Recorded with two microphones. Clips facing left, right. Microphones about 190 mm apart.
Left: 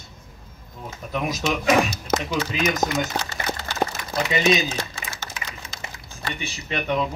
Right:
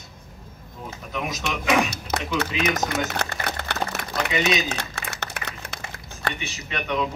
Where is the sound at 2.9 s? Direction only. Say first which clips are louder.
Left 1 dB; 65° right (ahead or behind).